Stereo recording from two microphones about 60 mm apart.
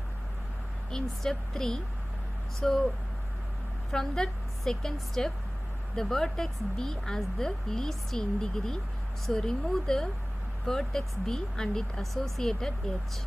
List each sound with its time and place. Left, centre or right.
0.9 s speech: centre
3.9 s speech: centre